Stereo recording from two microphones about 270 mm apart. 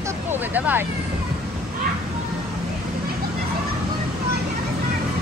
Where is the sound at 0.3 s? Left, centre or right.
Centre.